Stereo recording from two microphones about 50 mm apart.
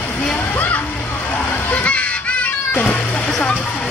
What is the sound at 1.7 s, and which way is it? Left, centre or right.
Music, left.